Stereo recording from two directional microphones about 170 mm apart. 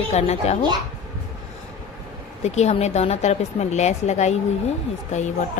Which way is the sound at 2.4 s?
40° left (ahead or behind).